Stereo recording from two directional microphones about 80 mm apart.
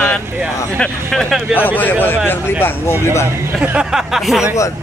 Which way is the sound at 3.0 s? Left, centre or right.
Left.